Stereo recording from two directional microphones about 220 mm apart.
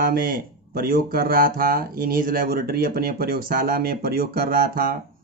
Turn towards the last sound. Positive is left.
turn(degrees=-40)  # may be behind; listen again after turning